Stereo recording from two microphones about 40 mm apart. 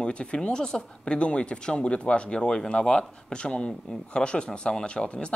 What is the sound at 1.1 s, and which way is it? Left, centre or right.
Speech, left.